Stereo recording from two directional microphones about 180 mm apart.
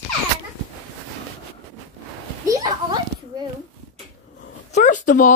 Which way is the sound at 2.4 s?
20° right (ahead or behind).